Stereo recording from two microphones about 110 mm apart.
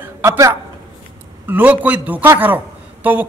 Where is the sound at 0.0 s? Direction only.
25° right (ahead or behind).